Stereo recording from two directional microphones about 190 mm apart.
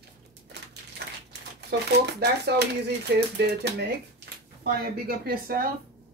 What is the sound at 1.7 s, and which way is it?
Speech, 60° right (ahead or behind).